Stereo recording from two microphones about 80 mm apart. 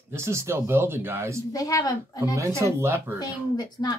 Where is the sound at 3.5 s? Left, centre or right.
Left.